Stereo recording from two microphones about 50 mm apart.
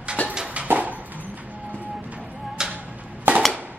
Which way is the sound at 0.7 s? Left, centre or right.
Right.